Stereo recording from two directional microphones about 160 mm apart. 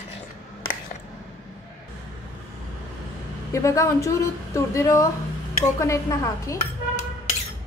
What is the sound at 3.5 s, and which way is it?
A woman's voice, 20° left (ahead or behind).